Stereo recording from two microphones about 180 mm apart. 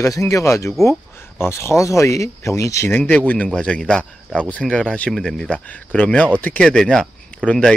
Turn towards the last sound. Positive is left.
turn(degrees=5)  # may be behind; listen again after turning